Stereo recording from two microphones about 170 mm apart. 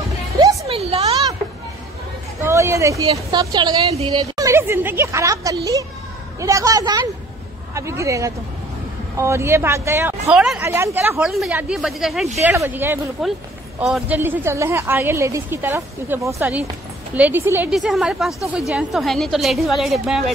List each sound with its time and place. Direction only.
0.7 s a sound: 35° right (ahead or behind)
2.4 s a sound: 15° right (ahead or behind)
3.1 s a woman's voice: 25° right (ahead or behind)
10.3 s a woman's voice: centre (ahead or behind)
10.6 s a woman's voice: 15° right (ahead or behind)
12.4 s a woman's voice: 10° right (ahead or behind)